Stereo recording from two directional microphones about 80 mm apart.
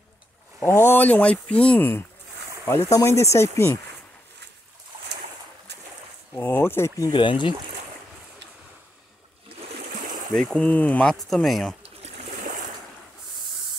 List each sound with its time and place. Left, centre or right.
0.7 s speech: left; by 1.8 s centre
1.8 s speech: left
6.3 s speech: left
7.1 s speech: left
10.3 s speech: centre
11.1 s speech: centre